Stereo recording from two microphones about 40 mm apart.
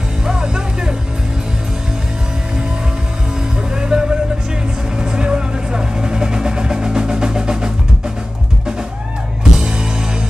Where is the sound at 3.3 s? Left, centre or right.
Centre.